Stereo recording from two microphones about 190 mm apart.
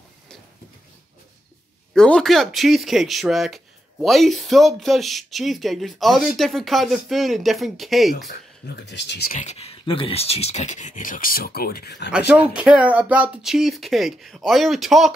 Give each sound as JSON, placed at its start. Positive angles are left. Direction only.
{"t": 2.0, "sound": "speech", "side_deg": 5}
{"t": 8.8, "sound": "speech", "side_deg": 65}
{"t": 9.4, "sound": "speech", "side_deg": 35}
{"t": 12.1, "sound": "speech", "side_deg": -10}